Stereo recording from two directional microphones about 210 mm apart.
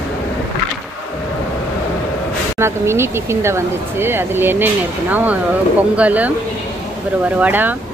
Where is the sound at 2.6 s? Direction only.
10° right (ahead or behind).